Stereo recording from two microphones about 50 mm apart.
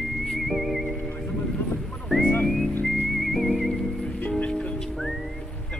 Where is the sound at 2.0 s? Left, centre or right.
Centre.